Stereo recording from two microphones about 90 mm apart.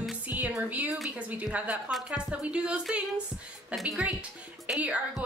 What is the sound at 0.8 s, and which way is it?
Speech, centre (ahead or behind).